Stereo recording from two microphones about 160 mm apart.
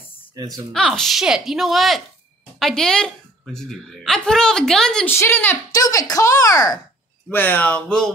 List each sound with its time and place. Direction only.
0.5 s a woman's voice: 5° left (ahead or behind); by 6.8 s 20° left (ahead or behind)
7.2 s speech: 10° left (ahead or behind)